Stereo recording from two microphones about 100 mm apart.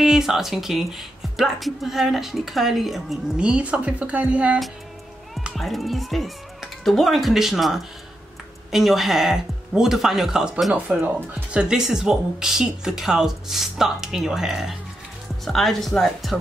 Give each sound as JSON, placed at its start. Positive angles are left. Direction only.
{"t": 0.0, "sound": "speech", "side_deg": -5}
{"t": 5.6, "sound": "speech", "side_deg": 0}
{"t": 11.0, "sound": "speech", "side_deg": -20}
{"t": 11.6, "sound": "speech", "side_deg": -5}